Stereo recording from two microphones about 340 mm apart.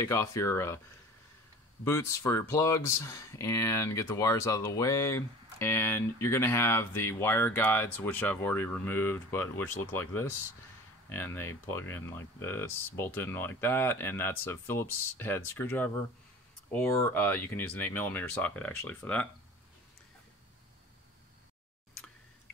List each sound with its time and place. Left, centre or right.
0.0 s speech: centre
1.9 s speech: centre